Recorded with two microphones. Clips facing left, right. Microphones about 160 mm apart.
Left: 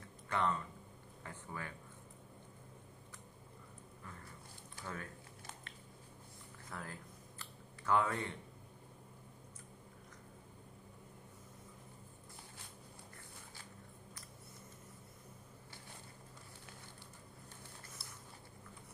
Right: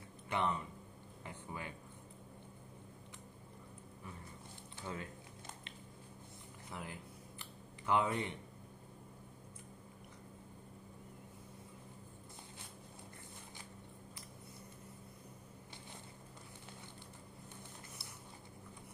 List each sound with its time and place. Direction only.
0.3 s speech: 15° right (ahead or behind)
4.7 s speech: 20° right (ahead or behind)
6.7 s a sound: 15° right (ahead or behind)